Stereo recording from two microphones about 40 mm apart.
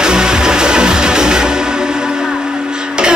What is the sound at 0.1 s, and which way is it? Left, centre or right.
Music, centre.